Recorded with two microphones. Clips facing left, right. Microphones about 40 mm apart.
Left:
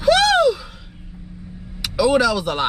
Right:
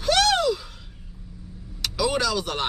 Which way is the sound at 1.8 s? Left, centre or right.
Centre.